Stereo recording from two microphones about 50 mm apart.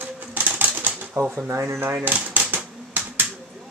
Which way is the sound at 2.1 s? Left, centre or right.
Right.